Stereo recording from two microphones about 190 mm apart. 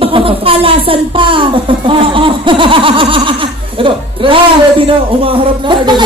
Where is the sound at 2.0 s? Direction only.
25° right (ahead or behind).